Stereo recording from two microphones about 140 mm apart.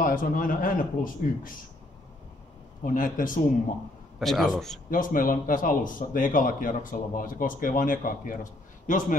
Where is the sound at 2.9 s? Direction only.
75° left (ahead or behind).